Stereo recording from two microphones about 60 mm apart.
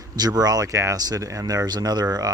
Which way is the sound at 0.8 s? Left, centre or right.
Right.